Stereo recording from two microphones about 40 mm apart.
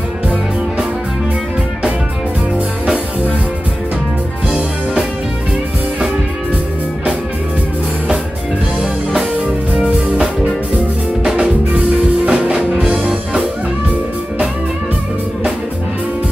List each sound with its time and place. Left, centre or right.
11.3 s music: right